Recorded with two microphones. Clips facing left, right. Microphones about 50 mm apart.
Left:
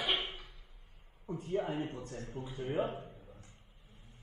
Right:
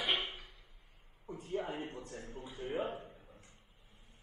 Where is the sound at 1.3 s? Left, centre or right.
Left.